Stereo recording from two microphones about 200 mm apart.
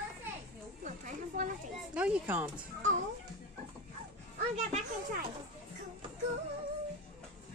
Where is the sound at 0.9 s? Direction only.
40° right (ahead or behind).